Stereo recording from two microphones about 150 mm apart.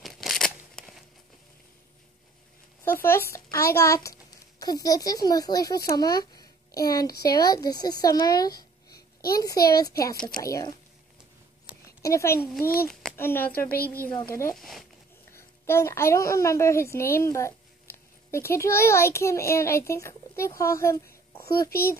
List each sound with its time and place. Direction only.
0.0 s a sound: centre (ahead or behind)
0.7 s chop: centre (ahead or behind)
2.8 s a woman's voice: 15° left (ahead or behind)
12.0 s speech: 20° left (ahead or behind)
12.5 s a child's voice: 80° left
12.8 s a child's voice: 15° left (ahead or behind)
14.5 s speech: centre (ahead or behind)
15.3 s a woman's voice: 15° left (ahead or behind)